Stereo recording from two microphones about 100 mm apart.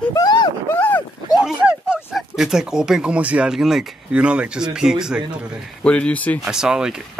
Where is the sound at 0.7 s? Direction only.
15° left (ahead or behind).